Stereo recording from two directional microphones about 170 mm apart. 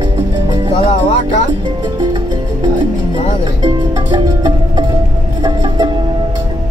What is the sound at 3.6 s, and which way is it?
Music, 30° right (ahead or behind).